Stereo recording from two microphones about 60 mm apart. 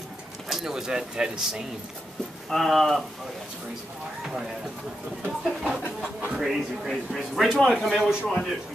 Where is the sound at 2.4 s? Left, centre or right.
Centre.